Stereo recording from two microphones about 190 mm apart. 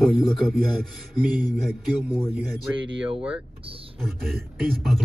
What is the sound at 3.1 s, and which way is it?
Speech, 30° right (ahead or behind).